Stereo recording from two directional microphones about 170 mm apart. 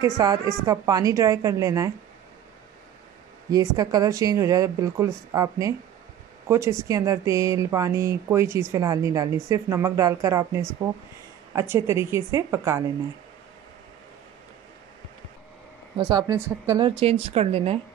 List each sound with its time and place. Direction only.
0.0 s speech: 20° right (ahead or behind)
3.5 s speech: 20° right (ahead or behind)
16.0 s speech: 25° right (ahead or behind)
16.8 s speech: 35° right (ahead or behind)